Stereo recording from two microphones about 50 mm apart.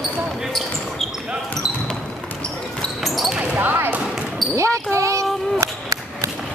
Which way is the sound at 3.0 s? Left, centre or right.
Centre.